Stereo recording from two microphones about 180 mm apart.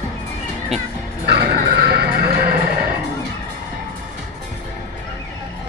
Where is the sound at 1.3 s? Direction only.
65° right (ahead or behind).